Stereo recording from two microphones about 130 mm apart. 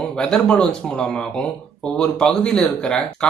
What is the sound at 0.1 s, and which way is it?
Speech, 5° left (ahead or behind).